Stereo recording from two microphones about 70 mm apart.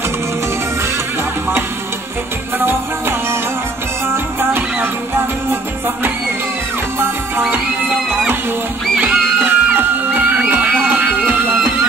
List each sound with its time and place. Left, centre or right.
2.6 s music: right
7.0 s music: right
10.5 s a sound: right